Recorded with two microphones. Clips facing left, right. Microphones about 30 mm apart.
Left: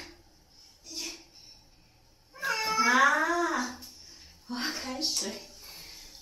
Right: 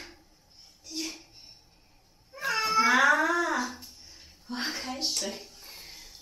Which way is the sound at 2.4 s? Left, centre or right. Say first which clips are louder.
Right 2 dB; centre.